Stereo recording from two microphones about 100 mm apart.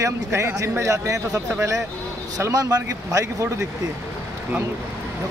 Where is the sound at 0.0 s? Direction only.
25° right (ahead or behind).